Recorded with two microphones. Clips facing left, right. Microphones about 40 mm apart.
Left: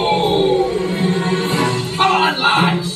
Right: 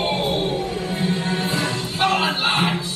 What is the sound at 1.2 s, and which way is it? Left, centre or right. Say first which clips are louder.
Music: left 5 dB; left.